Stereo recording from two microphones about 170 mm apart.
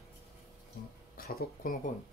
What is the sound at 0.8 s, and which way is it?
Speech, 60° left (ahead or behind).